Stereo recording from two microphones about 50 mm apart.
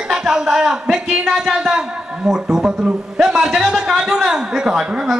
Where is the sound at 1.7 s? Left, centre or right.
Centre.